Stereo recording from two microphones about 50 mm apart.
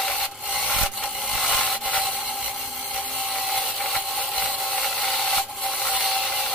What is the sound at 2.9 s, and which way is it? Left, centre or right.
Ratchet, left.